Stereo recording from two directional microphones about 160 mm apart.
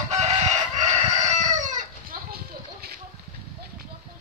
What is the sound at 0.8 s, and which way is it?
Chicken, 45° right (ahead or behind).